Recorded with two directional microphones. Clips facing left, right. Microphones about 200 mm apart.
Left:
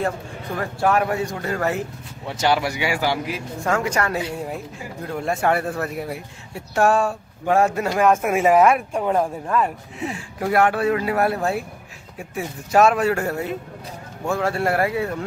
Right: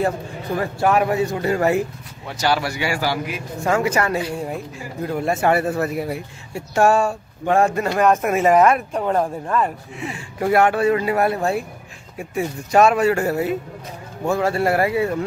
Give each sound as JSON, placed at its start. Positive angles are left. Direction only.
{"t": 0.6, "sound": "speech", "side_deg": -5}
{"t": 2.2, "sound": "speech", "side_deg": 20}
{"t": 3.6, "sound": "speech", "side_deg": -5}